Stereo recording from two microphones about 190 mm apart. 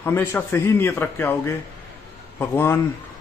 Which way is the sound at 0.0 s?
10° left (ahead or behind).